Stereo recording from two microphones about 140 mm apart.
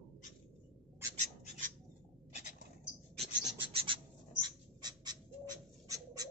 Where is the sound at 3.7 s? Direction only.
40° right (ahead or behind).